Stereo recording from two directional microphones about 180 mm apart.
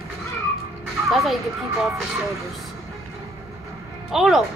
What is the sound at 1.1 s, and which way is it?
Speech, centre (ahead or behind).